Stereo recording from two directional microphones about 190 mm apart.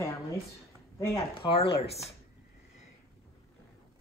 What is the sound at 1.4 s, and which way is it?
Speech, 30° left (ahead or behind).